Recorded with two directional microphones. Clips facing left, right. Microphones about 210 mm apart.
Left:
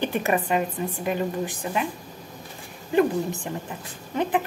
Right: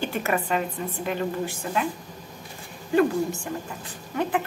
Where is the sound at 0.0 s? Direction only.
15° left (ahead or behind).